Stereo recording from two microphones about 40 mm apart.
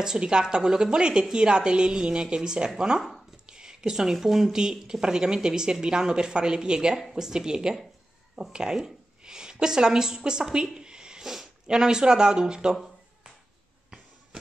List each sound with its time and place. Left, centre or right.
0.0 s speech: centre
4.5 s speech: centre
8.8 s a sound: centre
11.6 s speech: centre